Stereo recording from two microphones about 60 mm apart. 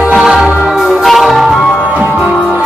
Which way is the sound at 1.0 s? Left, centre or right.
Centre.